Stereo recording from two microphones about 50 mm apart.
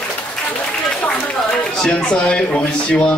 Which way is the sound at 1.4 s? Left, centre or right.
Centre.